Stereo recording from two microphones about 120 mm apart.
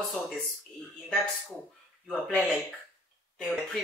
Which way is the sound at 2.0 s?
5° left (ahead or behind).